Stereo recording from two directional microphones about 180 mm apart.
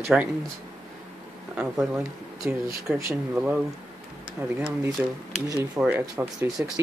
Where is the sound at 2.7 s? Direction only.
15° right (ahead or behind).